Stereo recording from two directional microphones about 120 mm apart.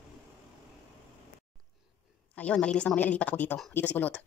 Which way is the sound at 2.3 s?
10° left (ahead or behind).